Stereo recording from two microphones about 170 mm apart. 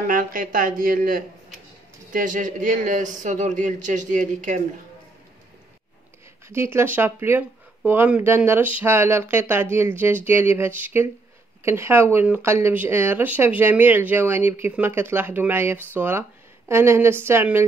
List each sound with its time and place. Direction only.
0.0 s a man's voice: 55° right (ahead or behind)
6.5 s speech: 15° right (ahead or behind)